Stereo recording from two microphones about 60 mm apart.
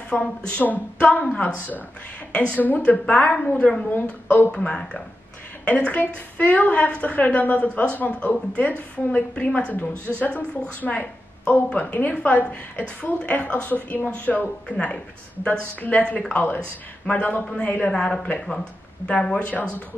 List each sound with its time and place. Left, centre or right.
0.1 s a woman's voice: left
3.9 s speech: left
4.5 s a woman's voice: centre
5.9 s a woman's voice: left
17.2 s a woman's voice: left